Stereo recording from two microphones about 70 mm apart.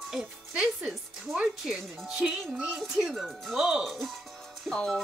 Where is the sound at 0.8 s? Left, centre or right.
Centre.